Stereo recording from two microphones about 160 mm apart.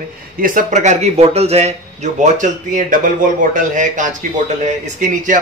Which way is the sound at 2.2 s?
50° right (ahead or behind).